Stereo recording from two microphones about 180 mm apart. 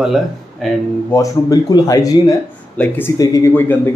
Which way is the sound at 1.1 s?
20° left (ahead or behind).